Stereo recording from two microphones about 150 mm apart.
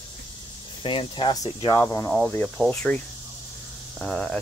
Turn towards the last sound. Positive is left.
turn(degrees=0)  # may be behind; listen again after turning